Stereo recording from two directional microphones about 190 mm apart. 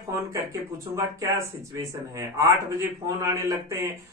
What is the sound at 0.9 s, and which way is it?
A man's voice, 15° right (ahead or behind).